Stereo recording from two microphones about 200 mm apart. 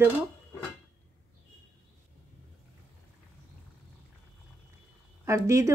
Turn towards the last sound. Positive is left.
turn(degrees=-15)  # may be behind; listen again after turning